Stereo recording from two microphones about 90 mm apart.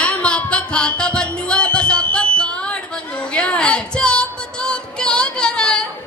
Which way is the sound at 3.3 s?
10° left (ahead or behind).